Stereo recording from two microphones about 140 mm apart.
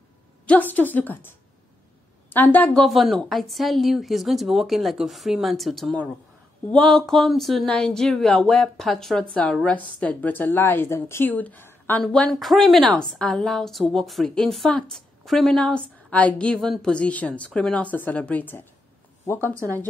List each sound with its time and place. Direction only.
0.5 s a woman's voice: 10° left (ahead or behind)
19.3 s speech: 20° right (ahead or behind)